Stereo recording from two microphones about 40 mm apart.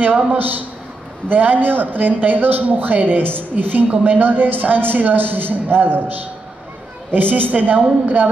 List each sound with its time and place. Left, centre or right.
0.0 s a man's voice: right
3.1 s a man's voice: right